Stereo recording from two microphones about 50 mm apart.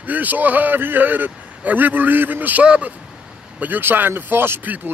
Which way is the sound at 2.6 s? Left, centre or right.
Right.